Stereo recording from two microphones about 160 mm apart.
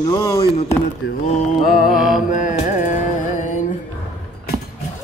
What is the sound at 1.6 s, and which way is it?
Music, 70° left (ahead or behind).